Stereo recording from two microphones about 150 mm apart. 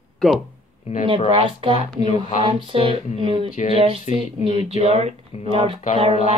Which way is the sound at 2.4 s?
35° right (ahead or behind).